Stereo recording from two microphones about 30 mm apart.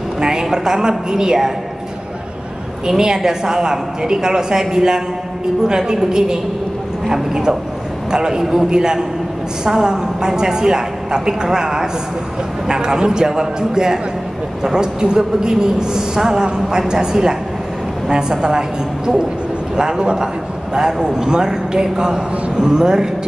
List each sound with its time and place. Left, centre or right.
0.2 s a woman's voice: right
3.0 s a woman's voice: right